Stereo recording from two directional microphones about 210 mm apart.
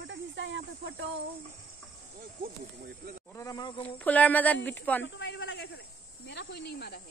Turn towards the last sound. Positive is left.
turn(degrees=50)  # may be behind; listen again after turning